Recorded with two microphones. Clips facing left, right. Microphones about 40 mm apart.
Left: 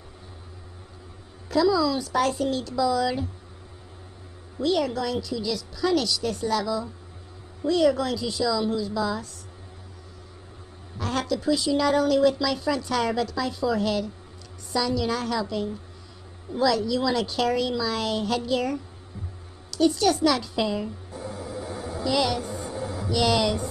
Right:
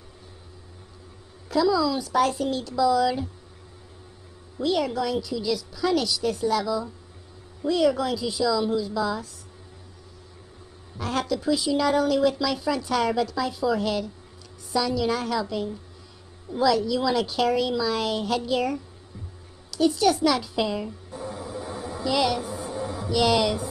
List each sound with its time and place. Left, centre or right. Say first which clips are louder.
1.5 s a woman's voice: even; centre
4.6 s a woman's voice: even; centre
11.0 s a woman's voice: even; centre
21.1 s music: right 1 dB; centre
21.7 s a sound: even; centre
22.9 s hum: right 1 dB; centre